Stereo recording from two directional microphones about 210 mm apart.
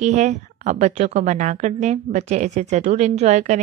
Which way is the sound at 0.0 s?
35° right (ahead or behind).